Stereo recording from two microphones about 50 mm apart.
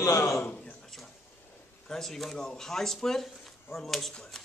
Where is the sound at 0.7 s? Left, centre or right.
Centre.